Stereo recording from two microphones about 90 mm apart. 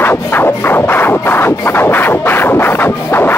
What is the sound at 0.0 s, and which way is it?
Music, 25° left (ahead or behind).